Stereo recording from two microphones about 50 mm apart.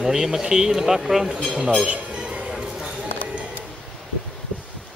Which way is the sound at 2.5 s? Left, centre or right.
Centre.